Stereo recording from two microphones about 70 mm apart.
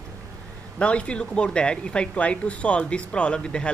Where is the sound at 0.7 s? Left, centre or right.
Centre.